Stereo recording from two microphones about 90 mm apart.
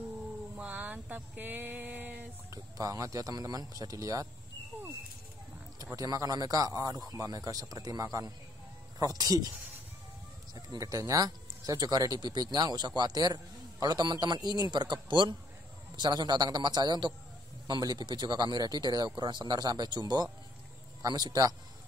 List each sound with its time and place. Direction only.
0.6 s a sound: 20° right (ahead or behind)
2.5 s speech: 35° right (ahead or behind)
5.8 s speech: 40° right (ahead or behind)
10.5 s speech: 45° right (ahead or behind)